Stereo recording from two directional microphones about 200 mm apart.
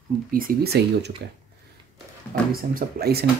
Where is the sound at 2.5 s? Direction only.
50° right (ahead or behind).